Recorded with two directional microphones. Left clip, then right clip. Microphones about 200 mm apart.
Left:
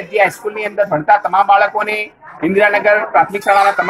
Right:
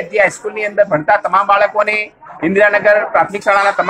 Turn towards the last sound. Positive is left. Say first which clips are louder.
# left 1 dB
turn(degrees=15)  # may be behind; listen again after turning